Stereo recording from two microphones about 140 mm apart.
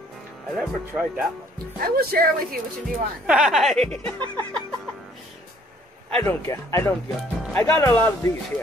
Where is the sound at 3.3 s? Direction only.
5° right (ahead or behind).